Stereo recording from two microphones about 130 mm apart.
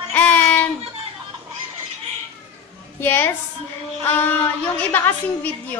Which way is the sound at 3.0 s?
15° left (ahead or behind).